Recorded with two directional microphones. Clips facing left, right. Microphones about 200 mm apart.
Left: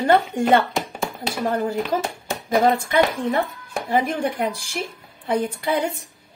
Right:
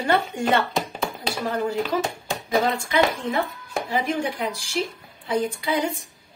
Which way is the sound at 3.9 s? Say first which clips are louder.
Left 4 dB; 50° left (ahead or behind).